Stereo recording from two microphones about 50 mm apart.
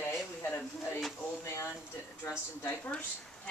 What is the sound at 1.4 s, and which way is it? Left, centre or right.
Speech, left.